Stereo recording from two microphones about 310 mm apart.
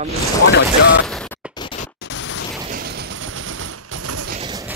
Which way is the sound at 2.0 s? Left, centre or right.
Left.